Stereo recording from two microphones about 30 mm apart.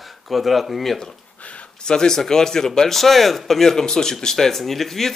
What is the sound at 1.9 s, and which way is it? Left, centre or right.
Speech, left.